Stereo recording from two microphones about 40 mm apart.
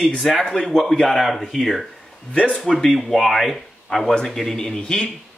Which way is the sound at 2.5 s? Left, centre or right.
Centre.